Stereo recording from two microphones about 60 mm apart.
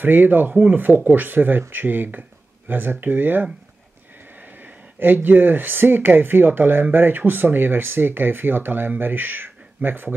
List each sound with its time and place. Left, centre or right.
0.0 s speech: right
4.9 s speech: right